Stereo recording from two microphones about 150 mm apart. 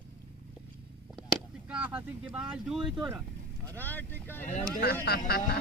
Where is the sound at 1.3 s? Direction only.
5° right (ahead or behind).